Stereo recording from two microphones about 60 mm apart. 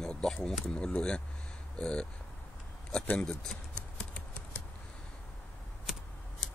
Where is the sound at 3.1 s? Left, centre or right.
Left.